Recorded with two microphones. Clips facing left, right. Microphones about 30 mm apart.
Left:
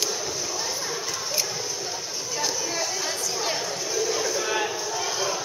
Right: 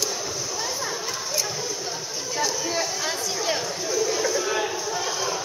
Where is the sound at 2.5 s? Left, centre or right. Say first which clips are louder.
Right 2 dB; centre.